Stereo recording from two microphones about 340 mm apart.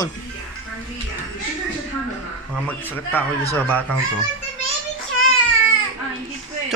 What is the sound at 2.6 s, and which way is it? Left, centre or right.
Speech, centre.